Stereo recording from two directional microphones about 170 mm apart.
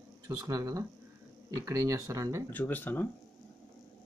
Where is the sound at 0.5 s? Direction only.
20° right (ahead or behind).